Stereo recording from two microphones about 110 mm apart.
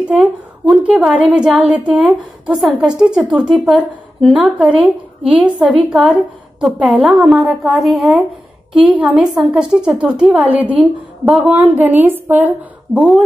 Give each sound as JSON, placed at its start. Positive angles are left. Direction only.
{"t": 0.0, "sound": "a woman's voice", "side_deg": -5}
{"t": 11.7, "sound": "a woman's voice", "side_deg": -15}